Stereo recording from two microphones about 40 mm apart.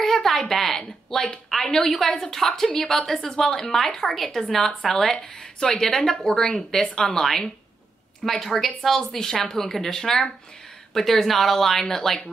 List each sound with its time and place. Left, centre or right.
0.0 s a woman's voice: centre